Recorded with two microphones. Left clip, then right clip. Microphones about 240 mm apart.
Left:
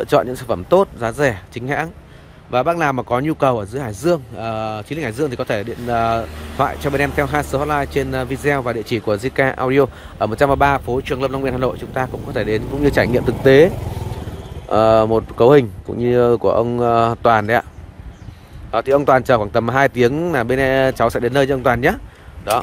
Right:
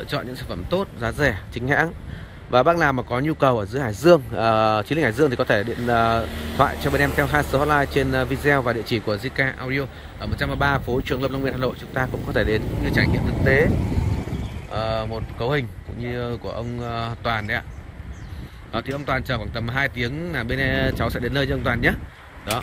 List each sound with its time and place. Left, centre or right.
0.0 s speech: centre
12.8 s speech: centre
14.7 s speech: left
15.0 s speech: left
15.5 s speech: left
16.3 s speech: left
16.7 s speech: left
18.7 s speech: centre